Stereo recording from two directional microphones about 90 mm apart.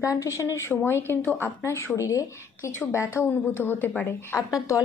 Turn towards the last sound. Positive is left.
turn(degrees=35)  # may be behind; listen again after turning